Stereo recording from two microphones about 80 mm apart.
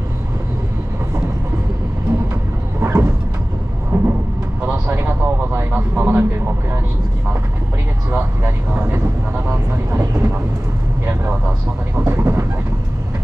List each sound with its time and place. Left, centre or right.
2.8 s vehicle: right
4.6 s vehicle: right
5.5 s speech: right
8.1 s speech: right
12.1 s speech: right